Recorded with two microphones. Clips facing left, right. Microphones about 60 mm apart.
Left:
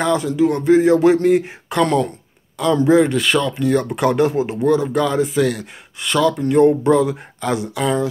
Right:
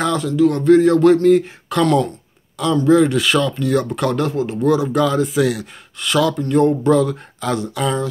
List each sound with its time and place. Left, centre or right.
0.0 s speech: centre
3.0 s speech: centre
4.3 s speech: left
4.6 s speech: centre